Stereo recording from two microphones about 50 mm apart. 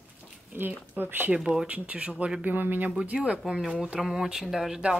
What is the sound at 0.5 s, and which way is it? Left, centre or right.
Speech, right.